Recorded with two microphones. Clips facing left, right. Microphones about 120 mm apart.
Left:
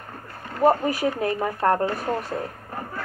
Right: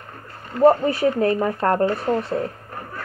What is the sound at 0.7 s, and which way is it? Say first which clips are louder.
Speech: right 4 dB; 5° left (ahead or behind).